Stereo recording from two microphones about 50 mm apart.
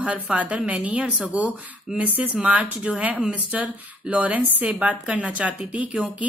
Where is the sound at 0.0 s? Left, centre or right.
Right.